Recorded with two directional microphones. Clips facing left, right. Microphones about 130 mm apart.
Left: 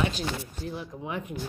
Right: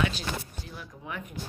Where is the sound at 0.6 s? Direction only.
25° left (ahead or behind).